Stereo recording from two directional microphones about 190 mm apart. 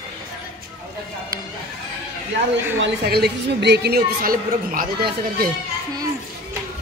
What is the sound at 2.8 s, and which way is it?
A woman's voice, 60° right (ahead or behind).